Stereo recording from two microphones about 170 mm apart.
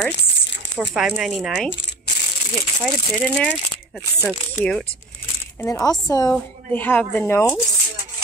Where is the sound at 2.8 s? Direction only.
5° left (ahead or behind).